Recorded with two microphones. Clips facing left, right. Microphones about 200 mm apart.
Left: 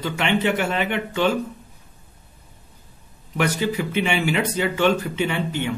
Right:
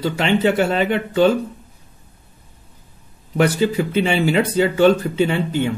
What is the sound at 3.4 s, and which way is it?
Speech, 30° right (ahead or behind).